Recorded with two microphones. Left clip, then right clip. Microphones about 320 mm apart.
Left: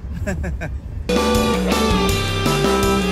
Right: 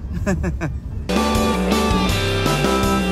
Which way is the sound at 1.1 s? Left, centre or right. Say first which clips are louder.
Left 2 dB; centre.